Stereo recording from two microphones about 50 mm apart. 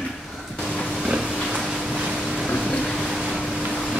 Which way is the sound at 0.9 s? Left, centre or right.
Centre.